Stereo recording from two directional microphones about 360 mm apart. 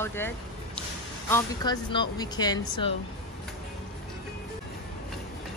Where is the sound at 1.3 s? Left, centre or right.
Centre.